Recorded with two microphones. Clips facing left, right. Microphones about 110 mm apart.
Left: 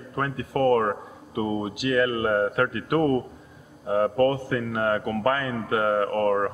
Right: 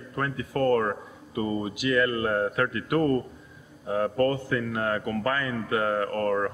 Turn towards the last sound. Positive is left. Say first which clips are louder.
# left 3 dB
turn(degrees=40)  # may be behind; listen again after turning